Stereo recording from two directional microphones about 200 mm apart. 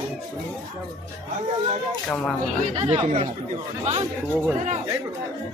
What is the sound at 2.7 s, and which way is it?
Speech, 30° right (ahead or behind).